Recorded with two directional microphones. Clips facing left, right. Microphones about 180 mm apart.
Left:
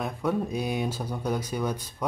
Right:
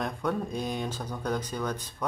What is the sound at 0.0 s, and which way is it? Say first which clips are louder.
Speech: left 2 dB; 5° left (ahead or behind).